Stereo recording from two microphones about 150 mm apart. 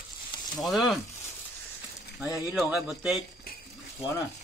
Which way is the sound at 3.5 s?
85° left.